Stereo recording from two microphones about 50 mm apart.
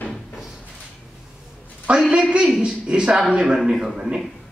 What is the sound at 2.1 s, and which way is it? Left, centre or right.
A woman's voice, centre.